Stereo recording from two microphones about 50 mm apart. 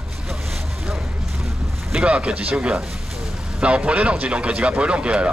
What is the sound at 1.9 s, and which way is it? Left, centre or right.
Speech, right.